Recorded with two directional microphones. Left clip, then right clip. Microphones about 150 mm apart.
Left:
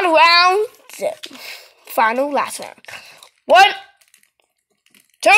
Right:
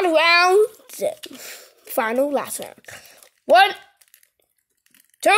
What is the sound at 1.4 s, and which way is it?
Speech, 80° right.